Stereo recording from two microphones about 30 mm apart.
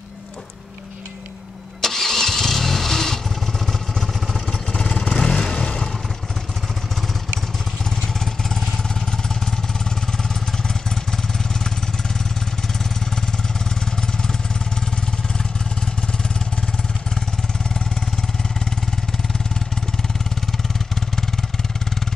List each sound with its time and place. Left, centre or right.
1.8 s engine starting: centre
4.5 s vehicle: left